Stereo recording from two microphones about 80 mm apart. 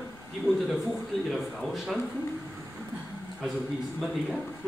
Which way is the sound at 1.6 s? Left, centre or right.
Centre.